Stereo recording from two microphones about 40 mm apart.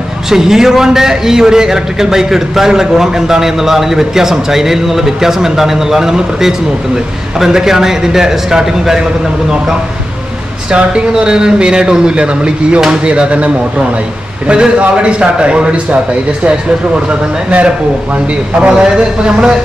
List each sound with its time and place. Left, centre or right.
0.3 s a man's voice: centre
10.7 s a man's voice: right
13.1 s a man's voice: right
17.5 s a man's voice: right
18.7 s a man's voice: centre